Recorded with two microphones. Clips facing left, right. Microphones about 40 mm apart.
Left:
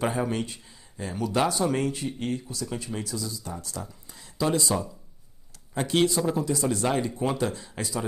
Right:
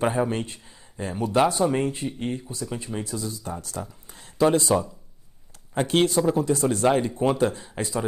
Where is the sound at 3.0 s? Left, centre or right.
Right.